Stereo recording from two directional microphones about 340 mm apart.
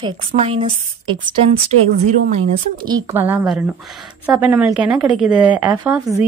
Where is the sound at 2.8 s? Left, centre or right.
Centre.